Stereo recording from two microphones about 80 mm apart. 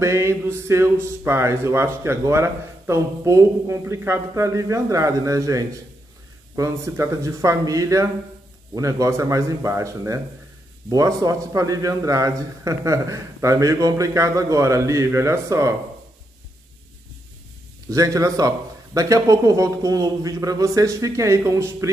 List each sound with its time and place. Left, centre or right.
0.0 s a man's voice: right
17.8 s a man's voice: right